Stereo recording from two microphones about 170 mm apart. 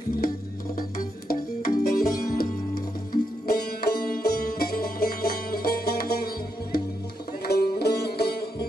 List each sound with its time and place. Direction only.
1.3 s music: 60° left (ahead or behind)